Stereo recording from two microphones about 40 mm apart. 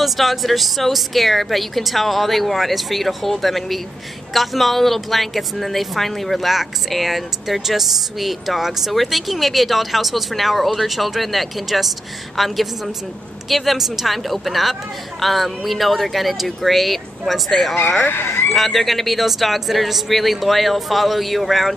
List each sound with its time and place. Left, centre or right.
0.0 s a woman's voice: centre
18.1 s speech: left
18.5 s a woman's voice: centre